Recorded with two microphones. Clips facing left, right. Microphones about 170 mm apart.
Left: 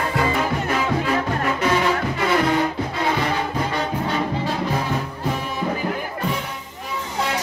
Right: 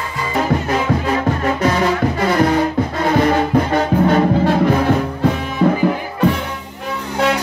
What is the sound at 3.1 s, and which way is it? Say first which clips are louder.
Music: right 9 dB; 50° right (ahead or behind).